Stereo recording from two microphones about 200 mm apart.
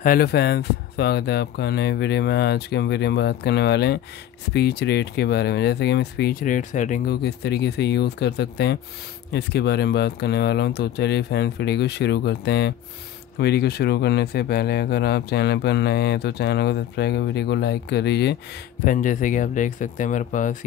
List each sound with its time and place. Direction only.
0.0 s speech: 50° left (ahead or behind)
7.2 s speech: 55° left (ahead or behind)
18.9 s speech: 40° left (ahead or behind)